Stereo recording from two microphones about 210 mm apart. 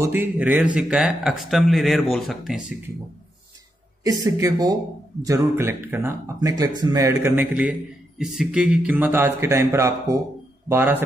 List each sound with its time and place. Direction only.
0.0 s speech: 10° right (ahead or behind)
4.0 s speech: 15° right (ahead or behind)